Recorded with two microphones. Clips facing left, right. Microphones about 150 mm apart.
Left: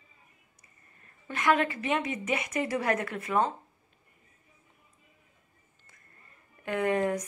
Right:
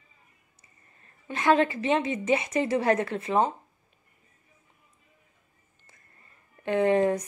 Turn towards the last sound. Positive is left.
turn(degrees=-30)  # may be behind; listen again after turning